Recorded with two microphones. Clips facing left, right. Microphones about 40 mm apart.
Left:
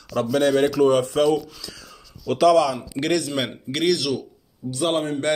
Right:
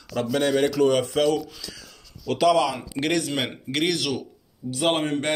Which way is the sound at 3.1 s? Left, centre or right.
Right.